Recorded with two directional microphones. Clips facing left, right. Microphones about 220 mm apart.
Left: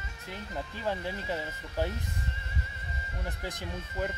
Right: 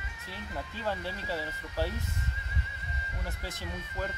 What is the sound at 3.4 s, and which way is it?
Speech, 15° left (ahead or behind).